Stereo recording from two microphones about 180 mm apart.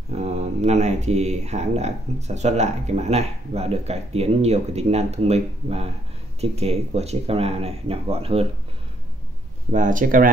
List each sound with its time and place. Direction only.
0.1 s speech: 35° right (ahead or behind)
9.7 s speech: 45° right (ahead or behind)